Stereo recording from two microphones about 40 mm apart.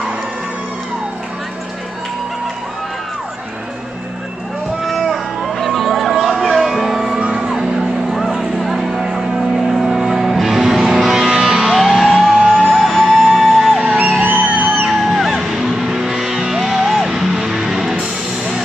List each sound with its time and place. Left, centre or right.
4.8 s music: centre
8.1 s music: centre
14.4 s music: right
14.9 s music: centre